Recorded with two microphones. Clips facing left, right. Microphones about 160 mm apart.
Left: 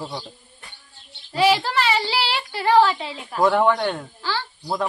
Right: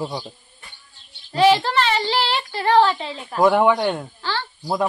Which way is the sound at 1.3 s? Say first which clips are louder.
Right 3 dB; 5° left (ahead or behind).